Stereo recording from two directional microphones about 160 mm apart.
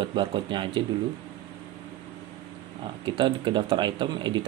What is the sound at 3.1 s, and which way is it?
Speech, 30° right (ahead or behind).